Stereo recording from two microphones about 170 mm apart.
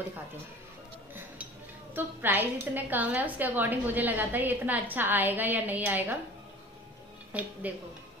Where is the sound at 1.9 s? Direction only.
10° right (ahead or behind).